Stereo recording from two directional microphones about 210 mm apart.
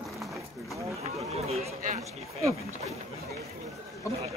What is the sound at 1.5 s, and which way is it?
Speech, 30° right (ahead or behind).